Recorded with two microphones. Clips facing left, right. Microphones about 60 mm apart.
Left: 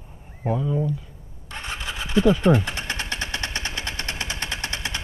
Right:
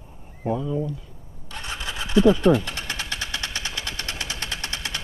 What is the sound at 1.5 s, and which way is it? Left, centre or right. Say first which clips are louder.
Engine starting: left 1 dB; left.